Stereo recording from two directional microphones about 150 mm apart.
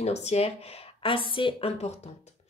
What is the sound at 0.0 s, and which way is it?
A woman's voice, 45° left (ahead or behind).